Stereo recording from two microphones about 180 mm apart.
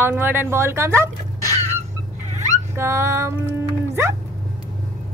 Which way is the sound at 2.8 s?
15° right (ahead or behind).